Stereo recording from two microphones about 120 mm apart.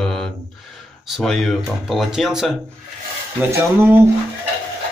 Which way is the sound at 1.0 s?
Centre (ahead or behind).